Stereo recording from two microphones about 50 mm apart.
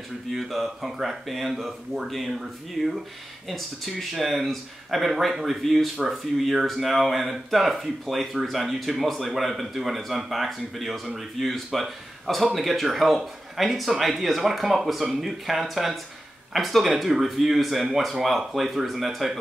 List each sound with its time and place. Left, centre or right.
0.3 s speech: centre